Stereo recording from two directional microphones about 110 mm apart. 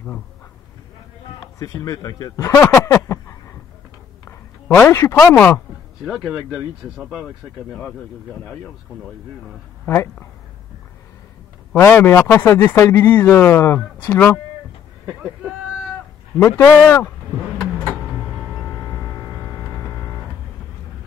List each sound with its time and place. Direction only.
1.6 s speech: 30° left (ahead or behind)
2.7 s a sound: 30° left (ahead or behind)
6.0 s speech: 5° right (ahead or behind)
7.1 s speech: 10° left (ahead or behind)
9.8 s speech: 20° left (ahead or behind)
11.7 s speech: 15° left (ahead or behind)
16.3 s speech: 30° left (ahead or behind)